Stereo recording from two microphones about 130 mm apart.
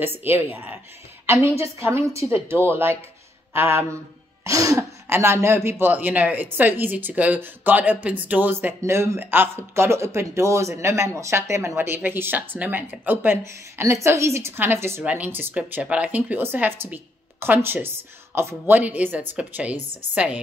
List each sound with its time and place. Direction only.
0.0 s a woman's voice: 15° right (ahead or behind)